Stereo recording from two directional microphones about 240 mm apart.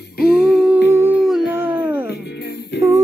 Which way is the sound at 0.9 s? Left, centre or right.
Centre.